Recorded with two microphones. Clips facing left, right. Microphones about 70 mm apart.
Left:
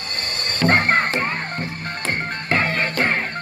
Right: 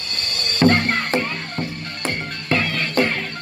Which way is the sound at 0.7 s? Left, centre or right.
Left.